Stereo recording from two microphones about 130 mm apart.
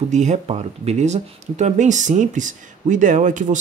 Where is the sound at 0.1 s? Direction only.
65° right (ahead or behind).